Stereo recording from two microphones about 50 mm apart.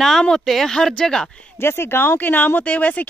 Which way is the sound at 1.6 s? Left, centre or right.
Left.